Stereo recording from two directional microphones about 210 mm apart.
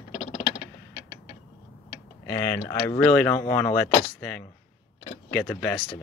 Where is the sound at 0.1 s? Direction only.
35° left (ahead or behind).